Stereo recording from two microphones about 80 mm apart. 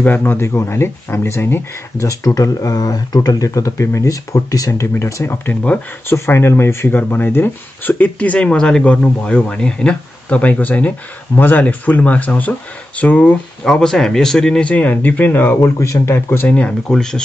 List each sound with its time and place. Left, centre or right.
0.0 s speech: left
2.0 s speech: left
5.5 s speech: centre
6.0 s speech: left
16.5 s speech: centre